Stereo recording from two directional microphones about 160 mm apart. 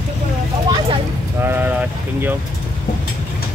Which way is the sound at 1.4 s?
15° right (ahead or behind).